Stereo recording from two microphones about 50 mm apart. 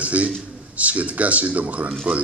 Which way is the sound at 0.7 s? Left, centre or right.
Right.